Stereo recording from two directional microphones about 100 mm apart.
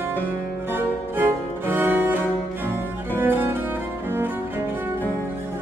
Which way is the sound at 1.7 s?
20° right (ahead or behind).